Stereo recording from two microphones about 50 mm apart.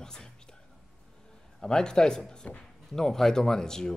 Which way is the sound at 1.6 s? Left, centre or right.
Centre.